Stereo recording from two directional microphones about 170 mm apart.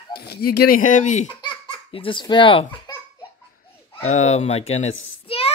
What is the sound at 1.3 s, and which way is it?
Speech, 30° left (ahead or behind).